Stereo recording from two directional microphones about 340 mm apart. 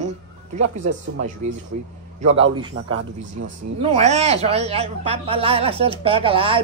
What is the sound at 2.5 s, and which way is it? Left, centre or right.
Speech, centre.